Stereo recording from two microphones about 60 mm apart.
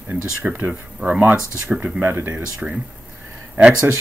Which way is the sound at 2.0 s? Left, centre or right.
Right.